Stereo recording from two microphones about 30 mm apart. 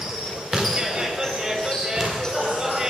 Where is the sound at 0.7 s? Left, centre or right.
Centre.